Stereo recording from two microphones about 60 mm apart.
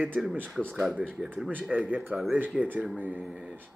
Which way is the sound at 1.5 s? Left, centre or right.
Right.